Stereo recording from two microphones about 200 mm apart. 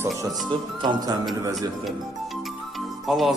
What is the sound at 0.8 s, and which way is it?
Speech, 25° right (ahead or behind).